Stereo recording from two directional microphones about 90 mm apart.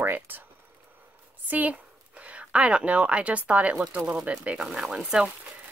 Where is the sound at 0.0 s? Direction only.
20° right (ahead or behind).